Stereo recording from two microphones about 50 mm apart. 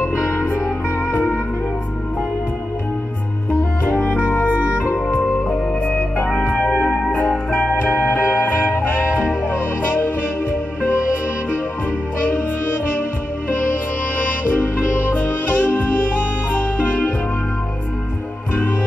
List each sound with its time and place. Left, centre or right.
1.1 s music: left
3.8 s music: left
4.3 s music: left
4.6 s music: right
4.9 s music: left
6.3 s organ: left
7.2 s music: left
8.7 s music: left
15.0 s music: left